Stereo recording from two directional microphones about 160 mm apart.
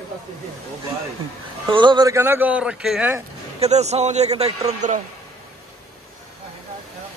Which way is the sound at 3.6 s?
45° right (ahead or behind).